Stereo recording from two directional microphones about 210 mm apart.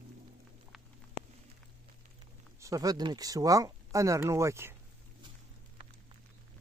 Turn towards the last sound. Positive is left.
turn(degrees=-15)  # may be behind; listen again after turning